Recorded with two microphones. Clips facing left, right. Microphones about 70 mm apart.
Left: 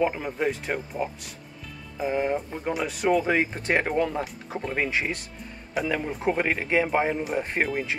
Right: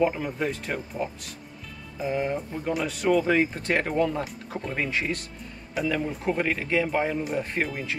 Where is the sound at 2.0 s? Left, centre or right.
Left.